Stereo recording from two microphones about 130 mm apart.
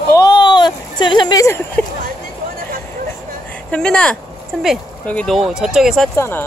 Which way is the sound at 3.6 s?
5° left (ahead or behind).